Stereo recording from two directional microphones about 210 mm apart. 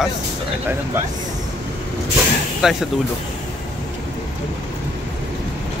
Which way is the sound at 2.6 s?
Centre (ahead or behind).